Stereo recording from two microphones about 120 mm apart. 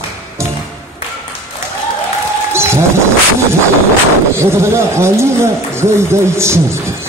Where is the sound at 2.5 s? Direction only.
20° right (ahead or behind).